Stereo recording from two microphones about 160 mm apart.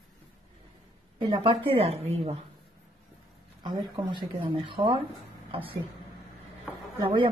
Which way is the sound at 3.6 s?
30° right (ahead or behind).